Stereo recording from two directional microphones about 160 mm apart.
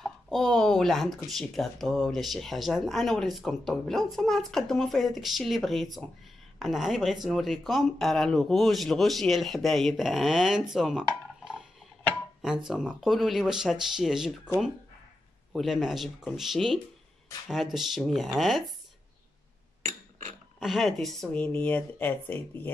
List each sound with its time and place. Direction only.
0.0 s speech: centre (ahead or behind)
12.6 s speech: 5° right (ahead or behind)
15.5 s speech: centre (ahead or behind)
19.8 s a sound: 50° right (ahead or behind)
20.5 s speech: centre (ahead or behind)